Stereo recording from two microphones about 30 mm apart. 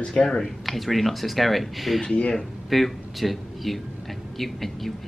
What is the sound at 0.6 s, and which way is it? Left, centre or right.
Speech, centre.